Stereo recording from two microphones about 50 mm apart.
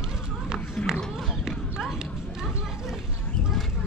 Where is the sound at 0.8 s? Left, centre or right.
Centre.